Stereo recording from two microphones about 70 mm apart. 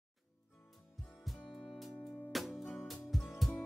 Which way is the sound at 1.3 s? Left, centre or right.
Centre.